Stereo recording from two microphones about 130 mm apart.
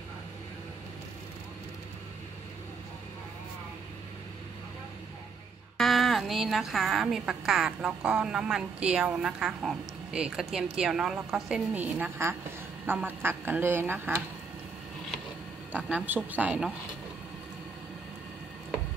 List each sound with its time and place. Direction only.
5.8 s a woman's voice: centre (ahead or behind); by 14.2 s 15° right (ahead or behind)
15.7 s a woman's voice: 10° right (ahead or behind)